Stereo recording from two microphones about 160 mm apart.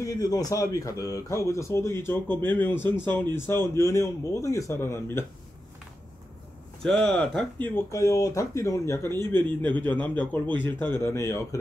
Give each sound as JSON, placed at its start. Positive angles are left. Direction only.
{"t": 0.0, "sound": "speech", "side_deg": 20}
{"t": 6.8, "sound": "speech", "side_deg": 5}
{"t": 7.6, "sound": "speech", "side_deg": 15}